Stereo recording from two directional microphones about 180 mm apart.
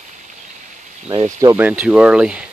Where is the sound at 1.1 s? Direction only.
20° right (ahead or behind); by 2.5 s 5° right (ahead or behind).